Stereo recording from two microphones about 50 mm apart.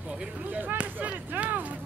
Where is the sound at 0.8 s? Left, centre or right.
Right.